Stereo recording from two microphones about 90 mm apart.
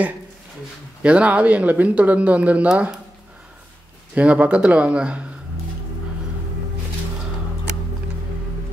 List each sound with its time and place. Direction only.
1.0 s speech: 15° right (ahead or behind)
4.1 s speech: 15° right (ahead or behind)